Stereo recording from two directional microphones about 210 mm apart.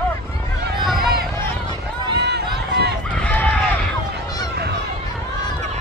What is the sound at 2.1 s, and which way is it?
Run, 50° right (ahead or behind).